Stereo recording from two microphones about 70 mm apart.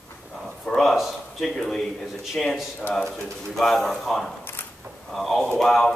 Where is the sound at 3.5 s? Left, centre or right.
Centre.